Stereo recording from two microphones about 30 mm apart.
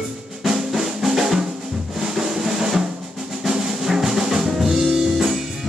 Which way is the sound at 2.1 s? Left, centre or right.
Centre.